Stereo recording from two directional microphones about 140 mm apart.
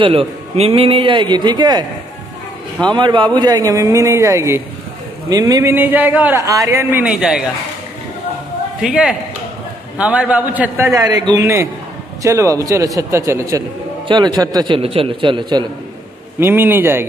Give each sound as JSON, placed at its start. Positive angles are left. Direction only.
{"t": 0.0, "sound": "a man's voice", "side_deg": -40}
{"t": 2.9, "sound": "a man's voice", "side_deg": -35}
{"t": 7.1, "sound": "a man's voice", "side_deg": -5}
{"t": 8.8, "sound": "a man's voice", "side_deg": -5}
{"t": 10.9, "sound": "a man's voice", "side_deg": -25}
{"t": 14.0, "sound": "a man's voice", "side_deg": -30}
{"t": 14.8, "sound": "a man's voice", "side_deg": -40}
{"t": 16.3, "sound": "a man's voice", "side_deg": -15}